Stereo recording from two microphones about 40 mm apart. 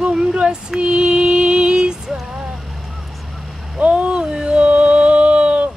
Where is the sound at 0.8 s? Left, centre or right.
Right.